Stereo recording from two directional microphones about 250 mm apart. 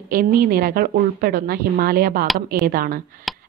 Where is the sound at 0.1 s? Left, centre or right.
Right.